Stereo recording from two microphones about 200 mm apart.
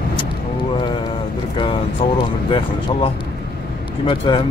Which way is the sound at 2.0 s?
25° left (ahead or behind).